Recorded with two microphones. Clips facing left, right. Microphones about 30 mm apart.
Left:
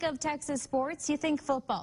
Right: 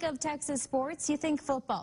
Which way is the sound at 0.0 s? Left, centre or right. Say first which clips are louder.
Left 1 dB; centre.